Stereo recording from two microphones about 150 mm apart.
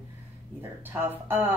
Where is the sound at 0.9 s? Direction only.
15° right (ahead or behind).